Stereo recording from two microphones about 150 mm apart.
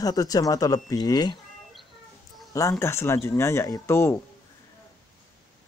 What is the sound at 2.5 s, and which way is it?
Speech, 20° left (ahead or behind).